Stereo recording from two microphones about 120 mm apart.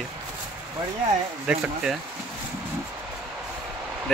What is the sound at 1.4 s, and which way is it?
Speech, 5° right (ahead or behind).